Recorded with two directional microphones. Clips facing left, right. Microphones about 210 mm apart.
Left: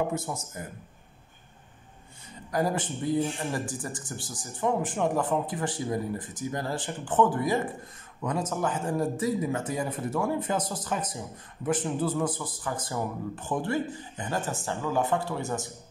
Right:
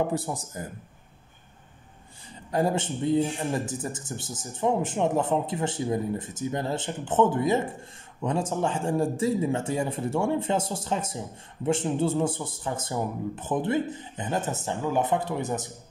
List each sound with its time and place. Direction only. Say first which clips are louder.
0.1 s speech: right 3 dB; 35° right (ahead or behind)
2.5 s a man's voice: right 2 dB; 25° right (ahead or behind)